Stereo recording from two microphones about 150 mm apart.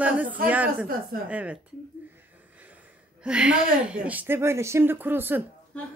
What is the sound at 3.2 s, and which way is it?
A woman's voice, 5° right (ahead or behind).